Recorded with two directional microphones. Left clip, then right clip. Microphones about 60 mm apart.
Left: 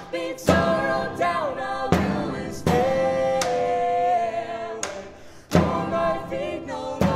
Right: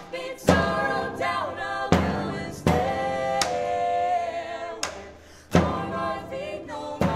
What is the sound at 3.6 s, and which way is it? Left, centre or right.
Music, centre.